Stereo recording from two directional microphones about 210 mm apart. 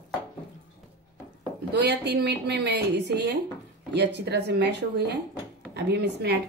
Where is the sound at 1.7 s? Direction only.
55° right (ahead or behind).